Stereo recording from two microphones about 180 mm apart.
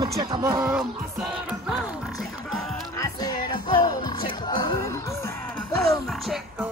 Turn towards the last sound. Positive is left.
turn(degrees=0)  # may be behind; listen again after turning